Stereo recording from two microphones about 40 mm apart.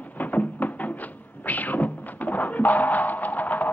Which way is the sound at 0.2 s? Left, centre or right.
Left.